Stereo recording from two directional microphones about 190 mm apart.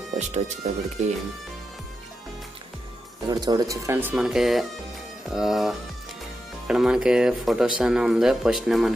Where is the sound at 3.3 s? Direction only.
20° right (ahead or behind); by 8.9 s centre (ahead or behind).